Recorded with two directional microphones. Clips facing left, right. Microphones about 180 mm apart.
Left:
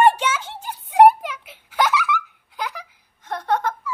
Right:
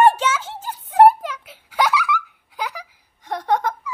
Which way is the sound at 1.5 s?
10° right (ahead or behind).